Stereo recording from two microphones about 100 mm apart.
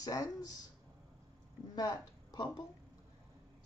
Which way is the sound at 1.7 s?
40° left (ahead or behind).